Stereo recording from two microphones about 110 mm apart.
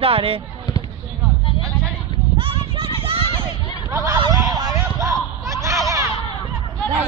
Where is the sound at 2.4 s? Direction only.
55° right (ahead or behind).